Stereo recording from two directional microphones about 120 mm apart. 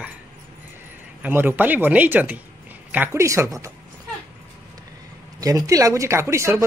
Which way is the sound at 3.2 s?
25° right (ahead or behind).